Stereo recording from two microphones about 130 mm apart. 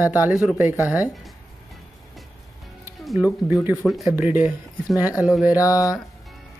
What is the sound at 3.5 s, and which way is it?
Speech, 15° right (ahead or behind).